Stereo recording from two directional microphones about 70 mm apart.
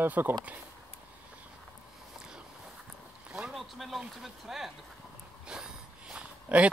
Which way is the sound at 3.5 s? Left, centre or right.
Centre.